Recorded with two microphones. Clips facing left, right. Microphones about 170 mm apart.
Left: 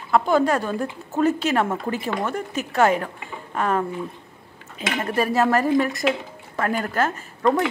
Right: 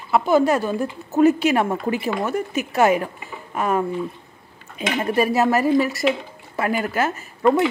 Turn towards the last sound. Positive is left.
turn(degrees=-10)  # may be behind; listen again after turning